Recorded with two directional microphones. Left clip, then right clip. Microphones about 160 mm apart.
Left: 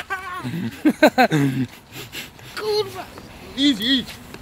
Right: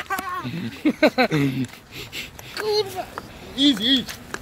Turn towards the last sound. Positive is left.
turn(degrees=5)  # may be behind; listen again after turning